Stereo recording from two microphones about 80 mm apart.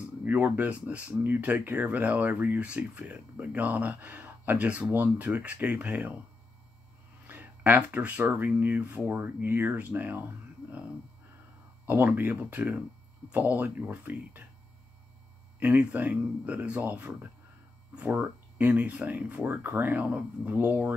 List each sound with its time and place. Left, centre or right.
0.0 s speech: centre
7.2 s speech: right
11.8 s speech: right
15.6 s speech: right